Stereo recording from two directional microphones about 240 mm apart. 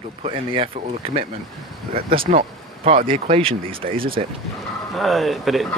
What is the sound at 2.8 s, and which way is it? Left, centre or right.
Speech, right.